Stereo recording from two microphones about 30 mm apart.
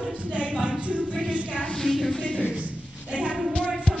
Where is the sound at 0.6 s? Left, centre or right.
Right.